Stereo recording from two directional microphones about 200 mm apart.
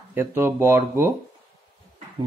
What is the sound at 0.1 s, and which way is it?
Speech, 10° right (ahead or behind).